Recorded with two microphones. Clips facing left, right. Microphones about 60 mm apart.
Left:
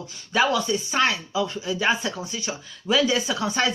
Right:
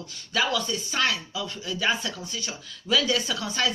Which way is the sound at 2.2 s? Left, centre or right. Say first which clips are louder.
Left 4 dB; centre.